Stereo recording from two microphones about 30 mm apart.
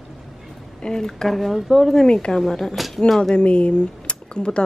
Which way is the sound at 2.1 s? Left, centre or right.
Left.